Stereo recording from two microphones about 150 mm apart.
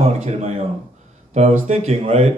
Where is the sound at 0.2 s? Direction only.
45° right (ahead or behind).